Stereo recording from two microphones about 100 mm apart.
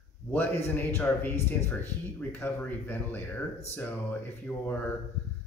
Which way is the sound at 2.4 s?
20° left (ahead or behind).